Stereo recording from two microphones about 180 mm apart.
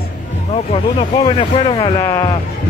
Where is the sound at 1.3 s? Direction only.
30° left (ahead or behind).